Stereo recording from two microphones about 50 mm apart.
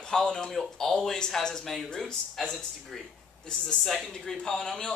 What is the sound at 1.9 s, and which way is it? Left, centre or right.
Speech, centre.